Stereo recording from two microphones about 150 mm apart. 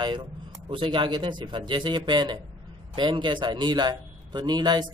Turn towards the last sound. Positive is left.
turn(degrees=-30)  # may be behind; listen again after turning